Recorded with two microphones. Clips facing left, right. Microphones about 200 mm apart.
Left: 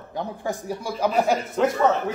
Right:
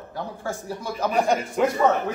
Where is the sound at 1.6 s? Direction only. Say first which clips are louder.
Left 1 dB; 10° right (ahead or behind).